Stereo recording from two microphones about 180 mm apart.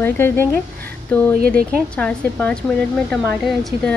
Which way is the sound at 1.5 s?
5° left (ahead or behind).